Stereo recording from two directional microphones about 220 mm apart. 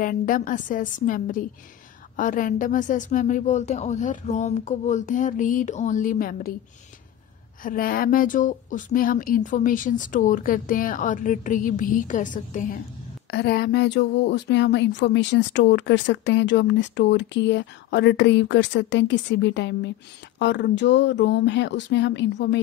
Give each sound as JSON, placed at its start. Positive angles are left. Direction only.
{"t": 0.0, "sound": "speech", "side_deg": 40}
{"t": 7.6, "sound": "speech", "side_deg": 40}